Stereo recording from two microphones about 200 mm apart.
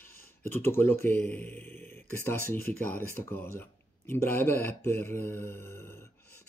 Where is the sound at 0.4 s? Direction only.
10° left (ahead or behind).